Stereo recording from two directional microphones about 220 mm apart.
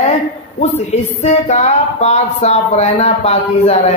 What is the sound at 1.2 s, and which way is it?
Speech, 30° left (ahead or behind).